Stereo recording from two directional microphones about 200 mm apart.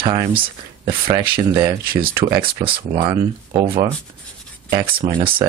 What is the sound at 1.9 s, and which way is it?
Speech, 50° right (ahead or behind).